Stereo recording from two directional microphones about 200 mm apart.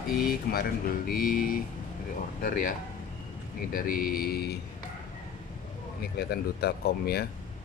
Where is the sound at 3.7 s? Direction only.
45° left (ahead or behind).